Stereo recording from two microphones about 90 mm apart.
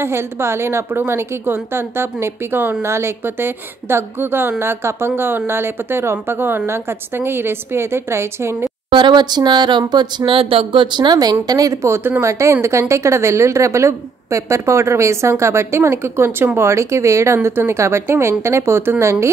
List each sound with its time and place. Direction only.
0.0 s a woman's voice: 30° right (ahead or behind)
8.9 s speech: 55° right (ahead or behind)
10.3 s a woman's voice: 90° right; by 19.2 s 30° right (ahead or behind)